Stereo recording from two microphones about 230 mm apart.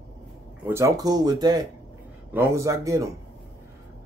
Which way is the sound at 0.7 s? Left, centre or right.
Centre.